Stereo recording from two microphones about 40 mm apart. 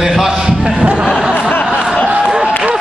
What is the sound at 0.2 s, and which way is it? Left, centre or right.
Speech, centre.